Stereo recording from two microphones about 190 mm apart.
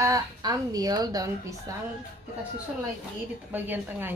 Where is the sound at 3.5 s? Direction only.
10° right (ahead or behind).